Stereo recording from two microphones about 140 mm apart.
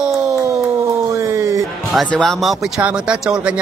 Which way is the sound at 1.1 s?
20° right (ahead or behind).